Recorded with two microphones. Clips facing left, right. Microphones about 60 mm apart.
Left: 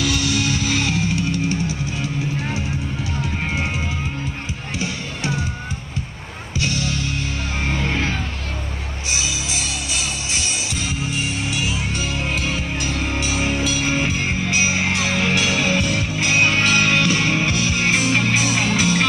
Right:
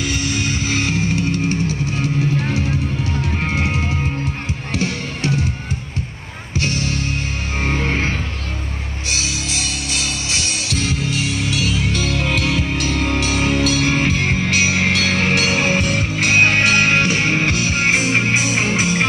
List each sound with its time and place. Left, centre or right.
0.3 s music: right
3.4 s music: right
6.6 s music: right
9.1 s music: right